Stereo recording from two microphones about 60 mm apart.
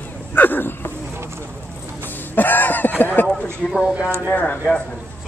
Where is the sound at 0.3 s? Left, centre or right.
Left.